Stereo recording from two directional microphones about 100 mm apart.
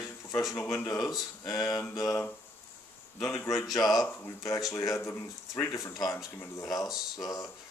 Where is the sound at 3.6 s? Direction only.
40° left (ahead or behind).